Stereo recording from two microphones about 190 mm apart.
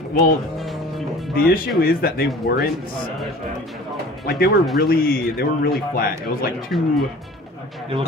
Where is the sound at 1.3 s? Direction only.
50° left (ahead or behind).